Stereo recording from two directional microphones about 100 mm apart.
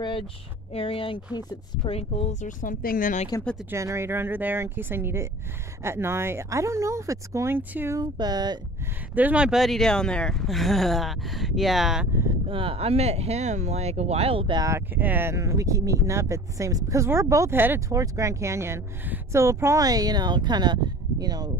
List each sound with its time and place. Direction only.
0.7 s speech: 65° left (ahead or behind)
1.9 s speech: 90° left
3.3 s speech: 35° left (ahead or behind)
3.7 s speech: 30° right (ahead or behind)
8.0 s speech: 45° right (ahead or behind)
9.1 s speech: 15° right (ahead or behind)
12.4 s speech: 65° right (ahead or behind)
14.7 s speech: 20° right (ahead or behind)
17.8 s a woman's voice: 35° right (ahead or behind)